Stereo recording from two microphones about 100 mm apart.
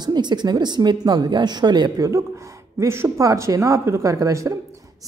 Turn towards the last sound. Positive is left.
turn(degrees=-35)  # may be behind; listen again after turning